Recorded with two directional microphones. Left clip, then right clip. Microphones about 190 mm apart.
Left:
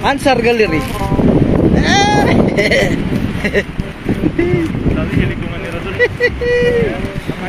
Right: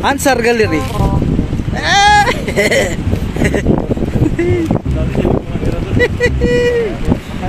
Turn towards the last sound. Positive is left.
turn(degrees=-10)  # may be behind; listen again after turning